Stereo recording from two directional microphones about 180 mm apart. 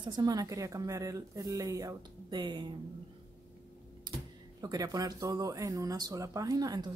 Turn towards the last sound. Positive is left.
turn(degrees=-20)  # may be behind; listen again after turning